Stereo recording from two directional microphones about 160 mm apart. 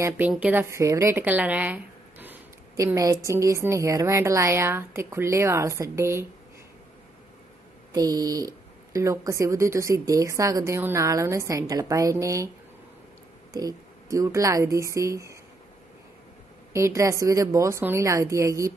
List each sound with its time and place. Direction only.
0.3 s speech: 10° right (ahead or behind)
7.9 s speech: 25° right (ahead or behind)
13.5 s speech: 20° right (ahead or behind)
16.7 s speech: 20° right (ahead or behind)